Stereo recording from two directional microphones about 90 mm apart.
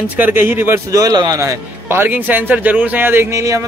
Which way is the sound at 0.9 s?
50° right (ahead or behind).